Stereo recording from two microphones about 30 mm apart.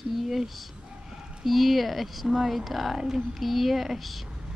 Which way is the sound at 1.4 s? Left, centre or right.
Centre.